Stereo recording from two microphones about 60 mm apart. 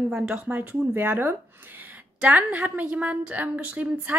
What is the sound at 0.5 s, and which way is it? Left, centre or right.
A woman's voice, right.